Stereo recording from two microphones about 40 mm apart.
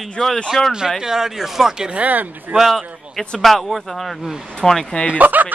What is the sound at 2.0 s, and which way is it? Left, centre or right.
Speech, right.